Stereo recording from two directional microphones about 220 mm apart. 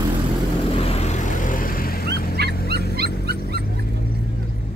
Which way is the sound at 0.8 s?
30° left (ahead or behind).